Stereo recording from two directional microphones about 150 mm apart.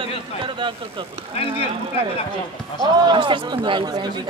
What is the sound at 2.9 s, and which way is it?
A man's voice, 30° right (ahead or behind).